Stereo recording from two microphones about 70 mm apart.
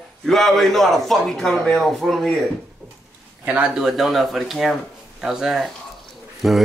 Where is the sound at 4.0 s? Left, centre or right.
Centre.